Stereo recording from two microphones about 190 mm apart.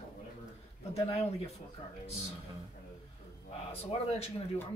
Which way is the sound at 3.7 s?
30° left (ahead or behind).